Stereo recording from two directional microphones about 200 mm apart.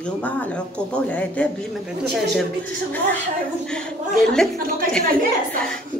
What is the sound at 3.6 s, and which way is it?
Speech, 5° left (ahead or behind).